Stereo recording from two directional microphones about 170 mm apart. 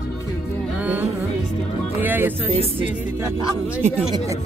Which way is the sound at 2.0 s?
10° right (ahead or behind).